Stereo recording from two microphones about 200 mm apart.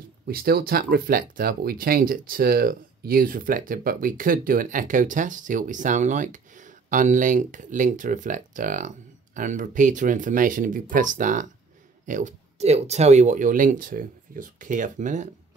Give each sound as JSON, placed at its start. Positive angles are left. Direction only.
{"t": 0.3, "sound": "speech", "side_deg": -50}